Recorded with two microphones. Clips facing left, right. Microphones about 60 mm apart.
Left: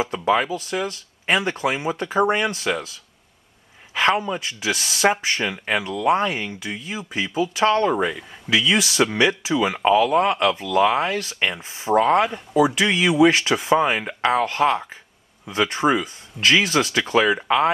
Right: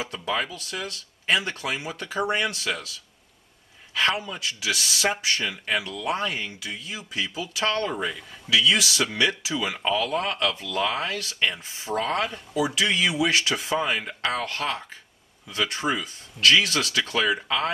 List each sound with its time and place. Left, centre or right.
0.3 s speech: centre
3.9 s a sound: left
4.3 s speech: left
12.5 s speech: left